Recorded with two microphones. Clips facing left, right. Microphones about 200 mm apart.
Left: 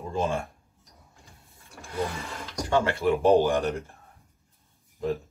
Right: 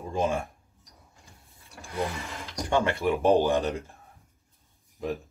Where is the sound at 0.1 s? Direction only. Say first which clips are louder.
Right 1 dB; 15° right (ahead or behind).